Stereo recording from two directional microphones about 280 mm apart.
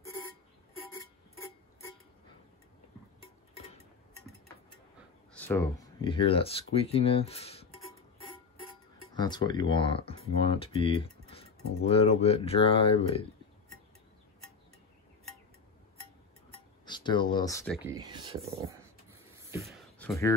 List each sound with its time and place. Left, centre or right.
5.3 s speech: centre
9.1 s speech: centre
16.8 s speech: centre
17.8 s speech: centre
19.3 s a sound: centre
20.0 s speech: centre